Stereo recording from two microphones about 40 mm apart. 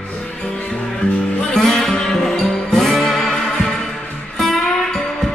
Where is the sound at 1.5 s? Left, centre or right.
Centre.